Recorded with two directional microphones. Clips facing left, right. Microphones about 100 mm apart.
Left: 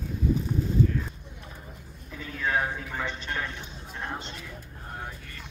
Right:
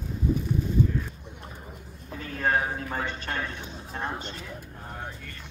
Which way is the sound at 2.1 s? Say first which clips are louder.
Right 3 dB; 50° right (ahead or behind).